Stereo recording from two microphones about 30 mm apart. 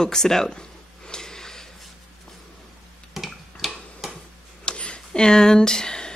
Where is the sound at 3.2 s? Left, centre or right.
Centre.